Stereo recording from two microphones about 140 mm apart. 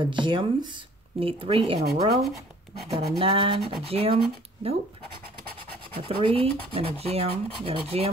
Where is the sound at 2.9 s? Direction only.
40° right (ahead or behind).